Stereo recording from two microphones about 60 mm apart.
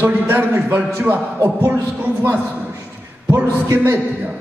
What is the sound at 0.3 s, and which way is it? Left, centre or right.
A man's voice, right.